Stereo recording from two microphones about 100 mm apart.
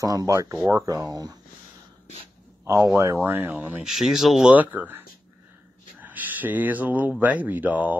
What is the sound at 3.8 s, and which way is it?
Speech, 5° right (ahead or behind).